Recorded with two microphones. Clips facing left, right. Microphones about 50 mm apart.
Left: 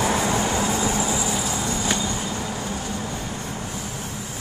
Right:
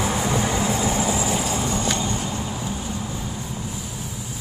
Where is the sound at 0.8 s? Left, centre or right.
Right.